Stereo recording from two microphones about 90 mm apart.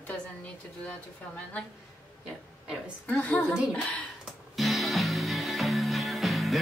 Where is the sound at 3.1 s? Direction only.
15° left (ahead or behind).